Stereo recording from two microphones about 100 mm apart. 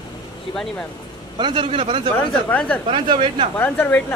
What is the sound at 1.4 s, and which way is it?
Speech, 55° right (ahead or behind).